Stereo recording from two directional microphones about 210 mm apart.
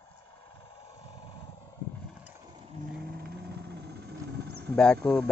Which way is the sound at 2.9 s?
45° right (ahead or behind).